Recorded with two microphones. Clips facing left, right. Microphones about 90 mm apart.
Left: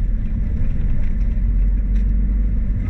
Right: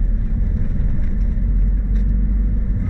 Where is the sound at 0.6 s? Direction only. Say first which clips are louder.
Right 2 dB; 20° right (ahead or behind).